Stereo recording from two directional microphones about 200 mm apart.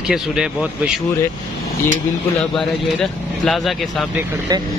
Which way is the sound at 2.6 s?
Centre (ahead or behind).